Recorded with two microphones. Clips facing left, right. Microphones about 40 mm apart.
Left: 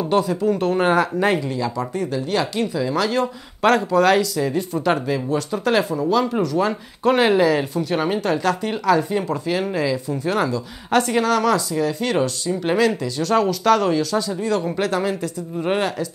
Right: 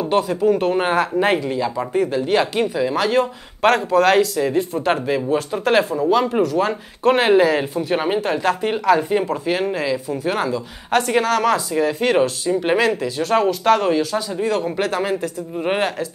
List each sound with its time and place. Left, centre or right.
0.0 s speech: centre
6.6 s speech: centre
9.5 s speech: centre